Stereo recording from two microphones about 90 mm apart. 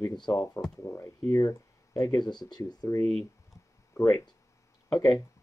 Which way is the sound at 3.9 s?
35° left (ahead or behind).